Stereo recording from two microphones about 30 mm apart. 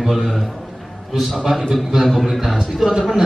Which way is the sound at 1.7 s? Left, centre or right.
Centre.